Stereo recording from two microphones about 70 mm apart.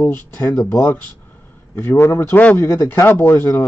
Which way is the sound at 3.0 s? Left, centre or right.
Left.